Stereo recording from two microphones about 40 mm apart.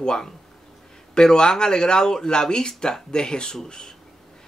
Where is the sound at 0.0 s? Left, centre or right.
Centre.